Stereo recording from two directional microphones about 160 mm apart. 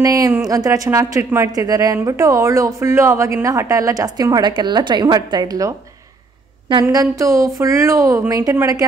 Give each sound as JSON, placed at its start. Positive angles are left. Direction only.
{"t": 0.0, "sound": "speech", "side_deg": -20}